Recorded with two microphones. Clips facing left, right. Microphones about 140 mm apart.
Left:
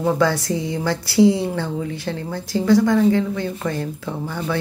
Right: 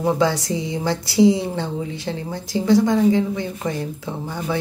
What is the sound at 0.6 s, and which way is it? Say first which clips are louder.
Speech: even; 20° right (ahead or behind).